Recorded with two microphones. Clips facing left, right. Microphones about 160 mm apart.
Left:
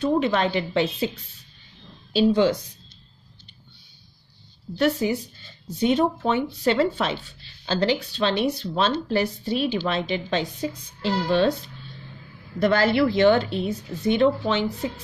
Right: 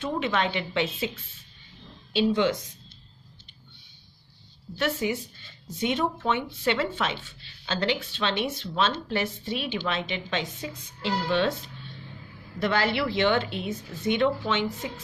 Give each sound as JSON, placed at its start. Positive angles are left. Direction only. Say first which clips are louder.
{"t": 0.0, "sound": "speech", "louder": "left 6 dB", "side_deg": 40}
{"t": 4.7, "sound": "speech", "louder": "left 5 dB", "side_deg": 35}
{"t": 12.5, "sound": "speech", "louder": "left 6 dB", "side_deg": 45}